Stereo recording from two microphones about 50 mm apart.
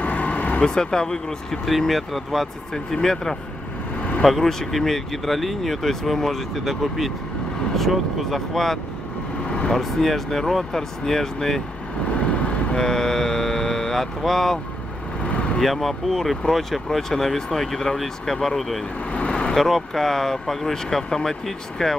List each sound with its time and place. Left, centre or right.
0.0 s vehicle: left
0.6 s speech: centre
12.2 s vehicle: left
12.8 s speech: centre
15.2 s vehicle: left
15.6 s speech: centre
19.1 s vehicle: left
19.5 s speech: centre